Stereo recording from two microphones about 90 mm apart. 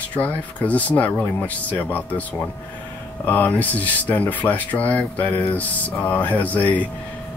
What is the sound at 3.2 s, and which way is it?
Speech, 20° left (ahead or behind).